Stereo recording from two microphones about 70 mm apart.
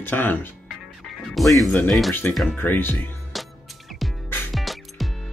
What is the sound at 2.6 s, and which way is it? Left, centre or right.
Speech, left.